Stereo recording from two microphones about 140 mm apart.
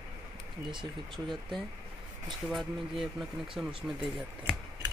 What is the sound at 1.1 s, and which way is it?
Speech, centre (ahead or behind).